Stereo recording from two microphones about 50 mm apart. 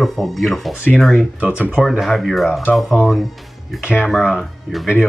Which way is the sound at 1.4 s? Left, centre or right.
Right.